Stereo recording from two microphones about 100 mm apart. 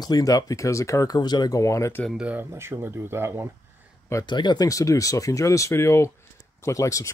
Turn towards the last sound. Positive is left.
turn(degrees=30)  # may be behind; listen again after turning